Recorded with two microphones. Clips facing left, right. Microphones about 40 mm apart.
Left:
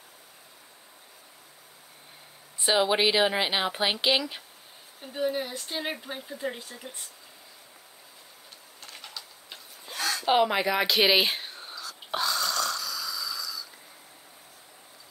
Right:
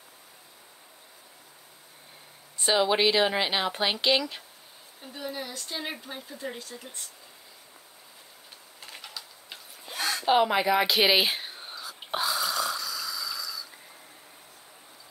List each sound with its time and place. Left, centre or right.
2.6 s speech: centre
5.0 s speech: left
9.0 s a sound: centre
9.9 s a sound: centre
10.2 s speech: centre
11.8 s snoring: centre